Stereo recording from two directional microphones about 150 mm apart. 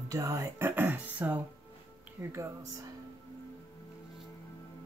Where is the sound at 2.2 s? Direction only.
20° right (ahead or behind).